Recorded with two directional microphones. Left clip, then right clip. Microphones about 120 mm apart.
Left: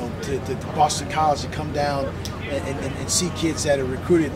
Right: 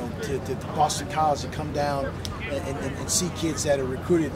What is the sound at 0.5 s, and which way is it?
Speech, 5° right (ahead or behind).